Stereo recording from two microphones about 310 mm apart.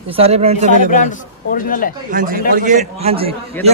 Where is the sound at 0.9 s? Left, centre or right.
Left.